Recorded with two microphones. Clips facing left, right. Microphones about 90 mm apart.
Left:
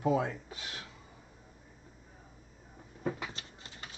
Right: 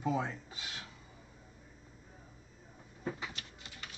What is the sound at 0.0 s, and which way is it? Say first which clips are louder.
Speech: left 5 dB; 55° left (ahead or behind).